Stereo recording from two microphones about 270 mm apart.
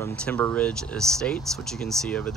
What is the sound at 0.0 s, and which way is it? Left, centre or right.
Speech, centre.